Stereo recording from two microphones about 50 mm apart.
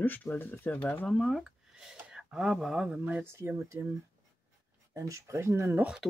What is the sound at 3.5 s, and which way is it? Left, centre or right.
Speech, right.